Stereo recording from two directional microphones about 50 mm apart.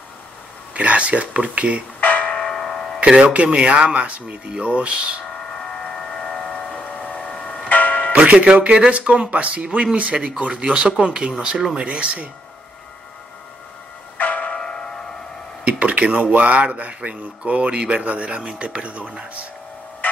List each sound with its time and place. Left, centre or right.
0.7 s speech: right
2.0 s music: left
2.3 s music: centre
3.4 s speech: right
5.5 s a sound: centre
6.5 s vehicle: left
7.2 s a sound: centre
7.7 s music: left
8.1 s music: right
8.5 s speech: right
11.8 s speech: right
14.1 s music: left
14.4 s music: centre
15.6 s speech: right